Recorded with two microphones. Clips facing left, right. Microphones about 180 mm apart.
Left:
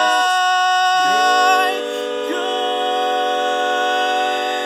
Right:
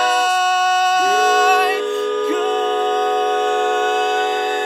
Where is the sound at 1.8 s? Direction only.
20° left (ahead or behind).